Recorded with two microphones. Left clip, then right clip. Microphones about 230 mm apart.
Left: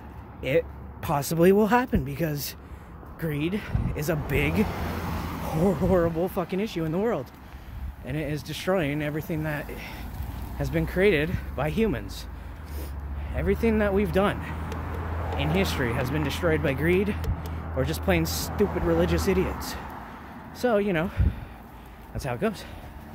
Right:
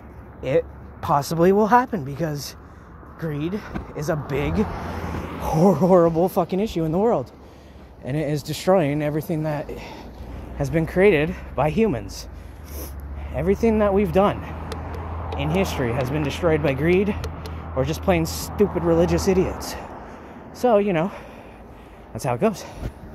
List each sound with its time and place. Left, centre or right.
0.4 s speech: centre
5.5 s speech: right
13.3 s speech: centre
20.5 s speech: centre